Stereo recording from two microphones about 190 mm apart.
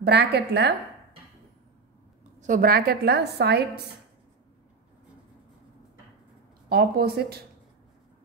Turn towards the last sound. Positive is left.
turn(degrees=-55)  # may be behind; listen again after turning